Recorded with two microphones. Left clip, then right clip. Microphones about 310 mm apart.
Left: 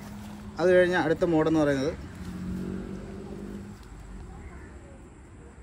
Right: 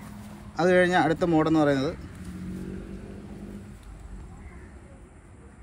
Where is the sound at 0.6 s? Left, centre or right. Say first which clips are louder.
Right 1 dB; right.